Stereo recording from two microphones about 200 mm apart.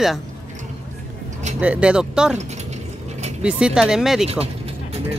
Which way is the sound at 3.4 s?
5° right (ahead or behind).